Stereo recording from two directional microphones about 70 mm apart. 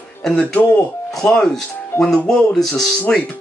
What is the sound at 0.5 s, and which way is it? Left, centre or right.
Speech, left.